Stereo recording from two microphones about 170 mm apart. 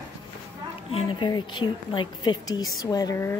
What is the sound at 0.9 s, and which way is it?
A woman's voice, 30° left (ahead or behind).